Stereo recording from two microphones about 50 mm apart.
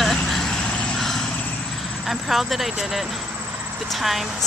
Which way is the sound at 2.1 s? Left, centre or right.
Centre.